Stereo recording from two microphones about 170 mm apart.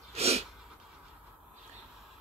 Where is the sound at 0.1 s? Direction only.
40° right (ahead or behind).